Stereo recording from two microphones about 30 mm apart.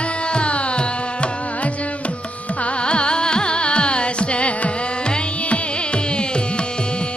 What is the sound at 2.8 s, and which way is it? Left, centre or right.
Carnatic music, left.